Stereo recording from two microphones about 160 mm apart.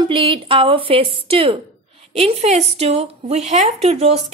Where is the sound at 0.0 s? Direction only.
35° right (ahead or behind).